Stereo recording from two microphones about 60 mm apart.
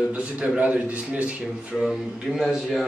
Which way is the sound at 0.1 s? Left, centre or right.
Right.